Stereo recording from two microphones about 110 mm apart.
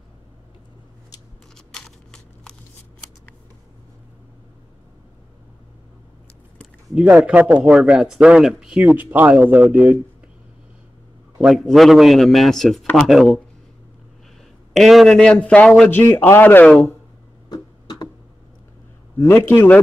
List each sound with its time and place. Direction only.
1.7 s a sound: 5° left (ahead or behind)
7.0 s speech: 10° right (ahead or behind)
11.4 s a man's voice: centre (ahead or behind)
14.8 s speech: centre (ahead or behind)
17.5 s a sound: 35° left (ahead or behind)
19.1 s a man's voice: 20° left (ahead or behind)